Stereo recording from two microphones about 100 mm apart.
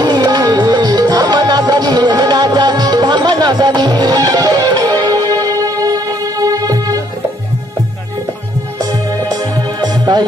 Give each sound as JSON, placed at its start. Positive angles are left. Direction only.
{"t": 0.0, "sound": "music", "side_deg": -45}
{"t": 9.8, "sound": "music", "side_deg": -40}